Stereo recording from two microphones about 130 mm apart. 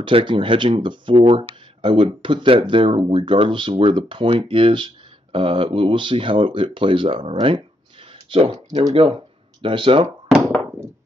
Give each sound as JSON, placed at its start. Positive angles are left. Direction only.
{"t": 0.0, "sound": "speech", "side_deg": -40}
{"t": 8.5, "sound": "speech", "side_deg": -30}
{"t": 8.9, "sound": "speech", "side_deg": -45}